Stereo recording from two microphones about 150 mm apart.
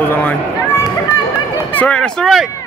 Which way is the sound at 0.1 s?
10° left (ahead or behind).